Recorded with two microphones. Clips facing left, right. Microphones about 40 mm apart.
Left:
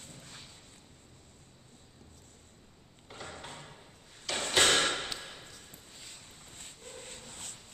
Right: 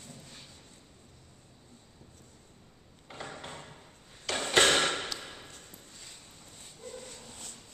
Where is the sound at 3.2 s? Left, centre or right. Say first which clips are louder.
Even; centre.